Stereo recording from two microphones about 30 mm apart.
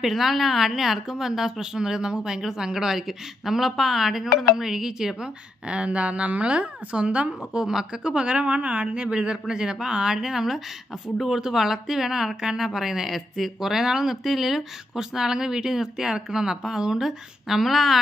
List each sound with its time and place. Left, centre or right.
0.1 s a woman's voice: centre
5.7 s a woman's voice: right
7.5 s speech: right
8.0 s a woman's voice: right
8.9 s a woman's voice: right; by 14.6 s centre
15.0 s speech: centre